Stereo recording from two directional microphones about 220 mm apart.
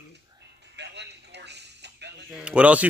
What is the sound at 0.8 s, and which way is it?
Music, 50° right (ahead or behind).